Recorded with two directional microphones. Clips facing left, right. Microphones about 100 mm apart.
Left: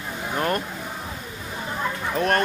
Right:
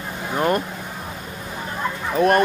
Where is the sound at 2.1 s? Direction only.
15° right (ahead or behind).